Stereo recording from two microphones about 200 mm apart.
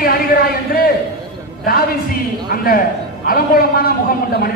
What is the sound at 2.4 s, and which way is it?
A man's voice, 45° left (ahead or behind).